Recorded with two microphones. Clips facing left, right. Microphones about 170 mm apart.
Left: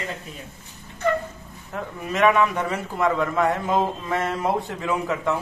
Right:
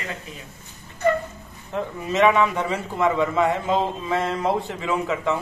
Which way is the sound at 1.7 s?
Centre (ahead or behind).